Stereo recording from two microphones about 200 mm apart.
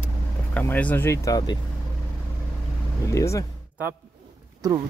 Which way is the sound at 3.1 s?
15° left (ahead or behind).